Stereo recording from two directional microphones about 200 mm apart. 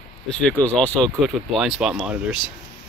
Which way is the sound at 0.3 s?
5° left (ahead or behind).